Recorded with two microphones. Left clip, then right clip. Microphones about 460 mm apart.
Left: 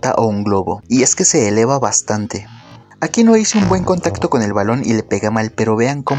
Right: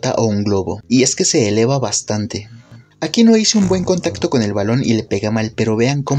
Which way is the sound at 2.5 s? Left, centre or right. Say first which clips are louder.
Left 6 dB; left.